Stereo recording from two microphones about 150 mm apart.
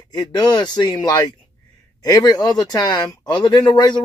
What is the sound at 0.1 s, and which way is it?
Speech, 25° left (ahead or behind).